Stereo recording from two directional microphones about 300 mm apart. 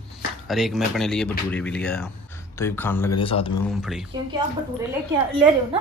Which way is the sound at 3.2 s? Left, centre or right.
Centre.